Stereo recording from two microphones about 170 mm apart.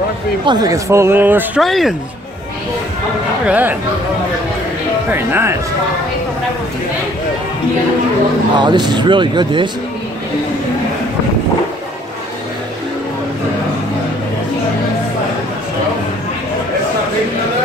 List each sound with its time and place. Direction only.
0.5 s speech: 20° right (ahead or behind)
1.6 s speech: centre (ahead or behind)
3.4 s speech: 10° right (ahead or behind)
5.1 s speech: 15° right (ahead or behind)
8.5 s speech: 25° right (ahead or behind)